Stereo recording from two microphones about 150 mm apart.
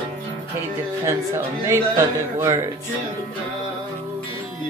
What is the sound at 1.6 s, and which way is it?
Speech, 20° right (ahead or behind).